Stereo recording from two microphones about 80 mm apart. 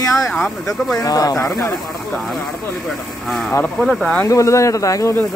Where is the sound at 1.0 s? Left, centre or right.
Left.